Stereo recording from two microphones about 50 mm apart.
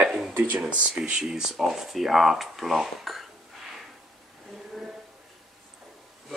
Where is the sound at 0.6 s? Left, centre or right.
Right.